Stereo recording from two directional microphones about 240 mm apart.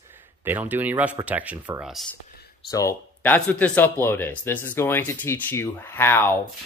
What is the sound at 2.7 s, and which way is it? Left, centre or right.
Speech, centre.